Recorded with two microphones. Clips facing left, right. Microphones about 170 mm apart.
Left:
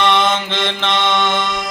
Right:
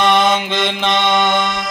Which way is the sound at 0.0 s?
10° right (ahead or behind).